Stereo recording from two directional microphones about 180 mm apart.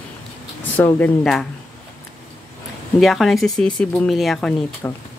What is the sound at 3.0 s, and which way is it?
Speech, centre (ahead or behind).